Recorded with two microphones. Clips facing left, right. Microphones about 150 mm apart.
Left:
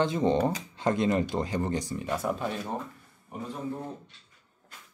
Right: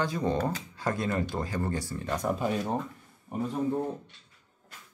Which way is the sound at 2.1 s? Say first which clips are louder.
Right 1 dB; 5° left (ahead or behind).